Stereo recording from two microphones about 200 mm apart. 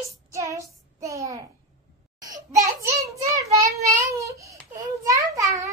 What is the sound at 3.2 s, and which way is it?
Child singing, 15° right (ahead or behind).